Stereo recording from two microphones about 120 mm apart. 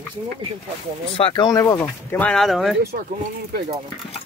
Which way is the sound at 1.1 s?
45° left (ahead or behind).